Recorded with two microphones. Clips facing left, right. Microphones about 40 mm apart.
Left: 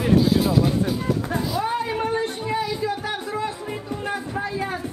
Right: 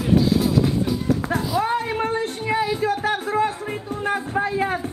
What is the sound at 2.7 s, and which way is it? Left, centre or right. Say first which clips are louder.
Music: right 4 dB; right.